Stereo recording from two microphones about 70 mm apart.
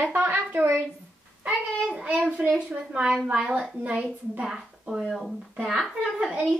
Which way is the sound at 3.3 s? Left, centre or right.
Centre.